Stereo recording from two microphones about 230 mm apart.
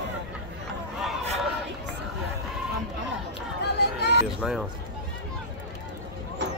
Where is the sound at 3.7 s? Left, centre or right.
Left.